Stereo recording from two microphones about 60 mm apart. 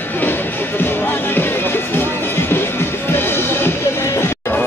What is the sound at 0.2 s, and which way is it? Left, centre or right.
Music, left.